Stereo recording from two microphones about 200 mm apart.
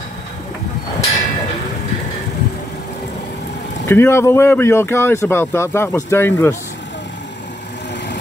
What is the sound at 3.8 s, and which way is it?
Speech, 10° left (ahead or behind).